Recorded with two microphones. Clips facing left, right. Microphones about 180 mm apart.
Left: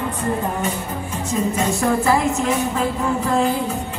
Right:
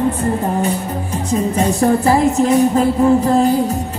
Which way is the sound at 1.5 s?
35° right (ahead or behind).